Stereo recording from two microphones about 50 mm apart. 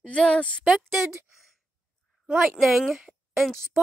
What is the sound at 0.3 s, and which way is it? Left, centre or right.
Speech, left.